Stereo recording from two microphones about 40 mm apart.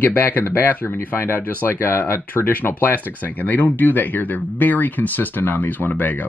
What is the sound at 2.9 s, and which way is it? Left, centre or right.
Speech, left.